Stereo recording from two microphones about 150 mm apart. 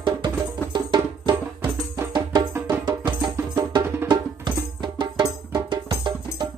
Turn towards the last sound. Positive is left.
turn(degrees=-30)  # may be behind; listen again after turning